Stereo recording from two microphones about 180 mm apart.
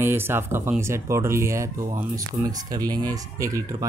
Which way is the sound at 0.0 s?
15° right (ahead or behind).